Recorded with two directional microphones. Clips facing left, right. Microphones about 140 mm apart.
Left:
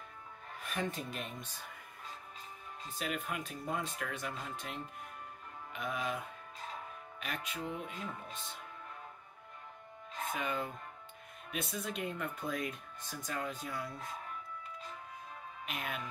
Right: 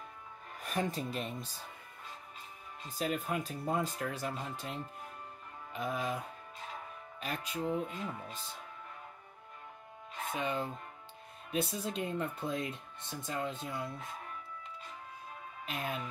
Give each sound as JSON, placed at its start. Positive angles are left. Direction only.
{"t": 0.6, "sound": "speech", "side_deg": -40}
{"t": 2.9, "sound": "speech", "side_deg": -35}
{"t": 10.3, "sound": "speech", "side_deg": -30}
{"t": 15.6, "sound": "speech", "side_deg": -30}